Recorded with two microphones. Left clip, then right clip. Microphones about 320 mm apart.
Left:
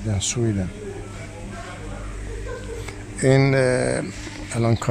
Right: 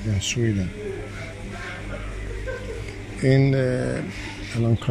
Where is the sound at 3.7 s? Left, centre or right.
Left.